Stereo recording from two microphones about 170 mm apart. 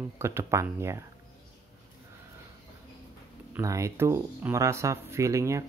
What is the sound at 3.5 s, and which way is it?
Speech, 15° right (ahead or behind).